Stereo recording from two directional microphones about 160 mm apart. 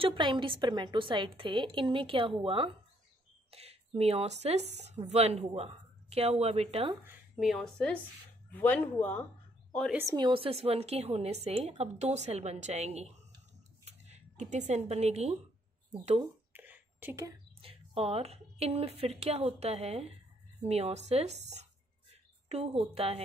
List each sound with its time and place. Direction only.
0.0 s a woman's voice: 30° right (ahead or behind)
7.3 s speech: centre (ahead or behind)
10.0 s a woman's voice: 30° right (ahead or behind)
13.8 s a sound: 45° right (ahead or behind)
14.7 s a woman's voice: 40° right (ahead or behind)
16.5 s a sound: 10° right (ahead or behind)
17.6 s a woman's voice: 35° right (ahead or behind)